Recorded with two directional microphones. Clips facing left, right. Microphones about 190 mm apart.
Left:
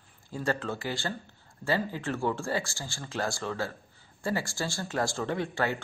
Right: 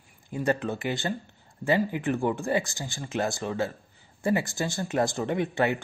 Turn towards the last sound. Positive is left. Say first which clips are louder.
# right 4 dB
turn(degrees=-20)  # may be behind; listen again after turning